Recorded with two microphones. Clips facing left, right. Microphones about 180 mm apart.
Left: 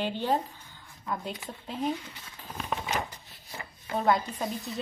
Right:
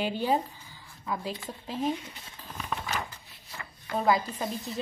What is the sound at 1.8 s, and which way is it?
Speech, 25° right (ahead or behind).